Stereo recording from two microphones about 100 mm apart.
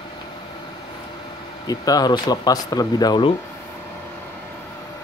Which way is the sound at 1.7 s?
40° left (ahead or behind).